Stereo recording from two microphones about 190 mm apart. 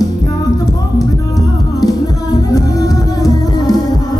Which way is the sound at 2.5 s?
20° left (ahead or behind).